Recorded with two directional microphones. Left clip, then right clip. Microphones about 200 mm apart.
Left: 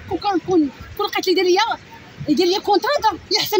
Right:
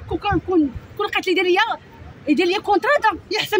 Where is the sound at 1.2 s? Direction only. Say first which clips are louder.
Left 1 dB; 30° right (ahead or behind).